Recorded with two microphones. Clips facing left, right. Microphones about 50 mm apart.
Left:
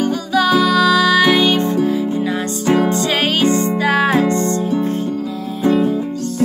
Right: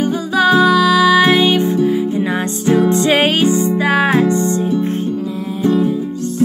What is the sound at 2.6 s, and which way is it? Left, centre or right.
Music, left.